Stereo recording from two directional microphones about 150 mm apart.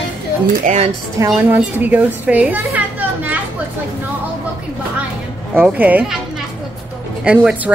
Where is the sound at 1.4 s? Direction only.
10° right (ahead or behind).